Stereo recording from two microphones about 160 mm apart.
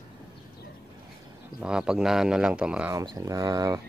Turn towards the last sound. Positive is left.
turn(degrees=-25)  # may be behind; listen again after turning